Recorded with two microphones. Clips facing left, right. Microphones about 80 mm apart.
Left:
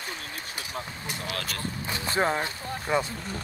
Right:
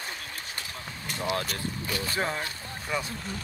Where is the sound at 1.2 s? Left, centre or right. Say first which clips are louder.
Right 7 dB; right.